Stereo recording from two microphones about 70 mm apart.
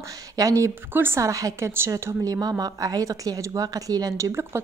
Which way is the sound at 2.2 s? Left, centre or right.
Right.